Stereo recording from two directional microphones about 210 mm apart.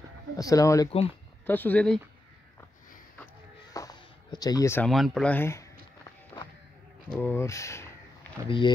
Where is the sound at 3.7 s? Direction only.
15° left (ahead or behind).